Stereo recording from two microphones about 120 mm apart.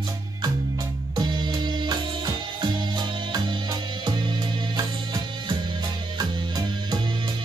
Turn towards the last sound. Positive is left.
turn(degrees=-35)  # may be behind; listen again after turning